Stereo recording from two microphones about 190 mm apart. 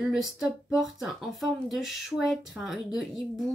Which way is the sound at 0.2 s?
Centre (ahead or behind).